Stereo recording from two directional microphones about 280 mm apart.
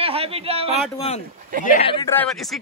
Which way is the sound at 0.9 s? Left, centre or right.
Left.